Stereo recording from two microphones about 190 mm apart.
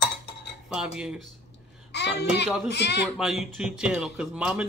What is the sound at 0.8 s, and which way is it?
Speech, 5° right (ahead or behind).